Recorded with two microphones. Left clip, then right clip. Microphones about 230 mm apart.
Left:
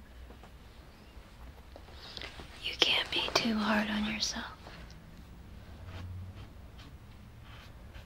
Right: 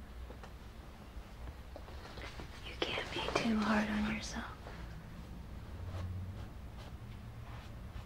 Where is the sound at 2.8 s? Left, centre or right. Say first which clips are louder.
Left 9 dB; left.